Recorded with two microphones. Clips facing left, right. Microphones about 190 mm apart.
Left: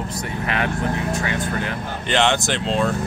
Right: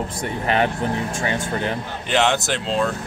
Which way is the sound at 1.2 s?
25° right (ahead or behind).